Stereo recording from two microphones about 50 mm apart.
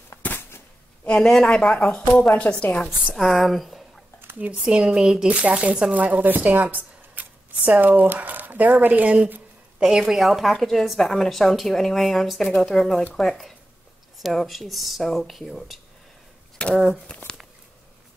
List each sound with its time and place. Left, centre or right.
0.2 s a sound: left
1.0 s a woman's voice: centre
2.6 s speech: left
3.2 s speech: centre
4.6 s speech: centre
5.3 s speech: right
9.8 s a woman's voice: centre
10.0 s a woman's voice: centre
16.6 s speech: centre